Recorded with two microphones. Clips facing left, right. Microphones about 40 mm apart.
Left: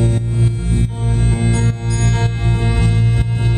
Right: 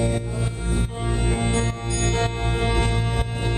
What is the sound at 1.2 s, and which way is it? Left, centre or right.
Music, centre.